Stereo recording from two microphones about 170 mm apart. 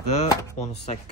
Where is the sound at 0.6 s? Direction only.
40° left (ahead or behind).